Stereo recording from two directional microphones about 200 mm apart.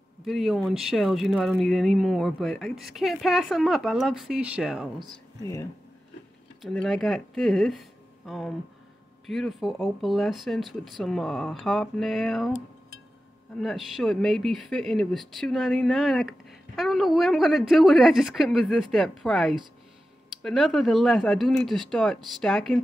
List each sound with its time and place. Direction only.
0.2 s speech: centre (ahead or behind)
5.4 s speech: 15° left (ahead or behind)
6.6 s speech: 5° left (ahead or behind)